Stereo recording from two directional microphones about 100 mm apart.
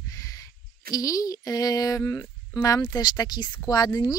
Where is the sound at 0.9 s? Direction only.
35° left (ahead or behind).